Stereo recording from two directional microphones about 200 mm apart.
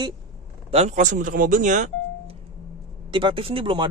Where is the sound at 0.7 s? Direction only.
35° right (ahead or behind).